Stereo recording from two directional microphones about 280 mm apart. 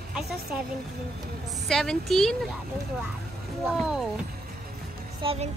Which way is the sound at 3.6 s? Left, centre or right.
Centre.